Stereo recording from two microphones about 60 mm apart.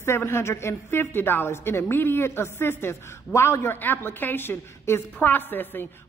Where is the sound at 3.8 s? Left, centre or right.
Left.